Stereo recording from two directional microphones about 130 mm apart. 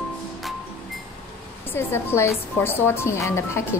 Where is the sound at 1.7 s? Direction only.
20° left (ahead or behind).